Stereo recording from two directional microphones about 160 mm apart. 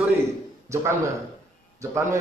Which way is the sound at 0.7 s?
20° right (ahead or behind).